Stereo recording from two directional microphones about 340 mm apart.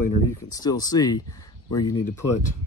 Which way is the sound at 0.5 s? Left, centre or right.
Centre.